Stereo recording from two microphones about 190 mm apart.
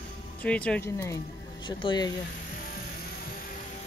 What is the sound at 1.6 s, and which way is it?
Speech, 25° left (ahead or behind).